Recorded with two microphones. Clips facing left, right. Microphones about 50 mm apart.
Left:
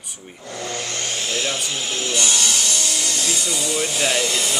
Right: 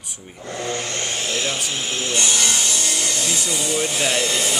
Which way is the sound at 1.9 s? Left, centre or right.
Right.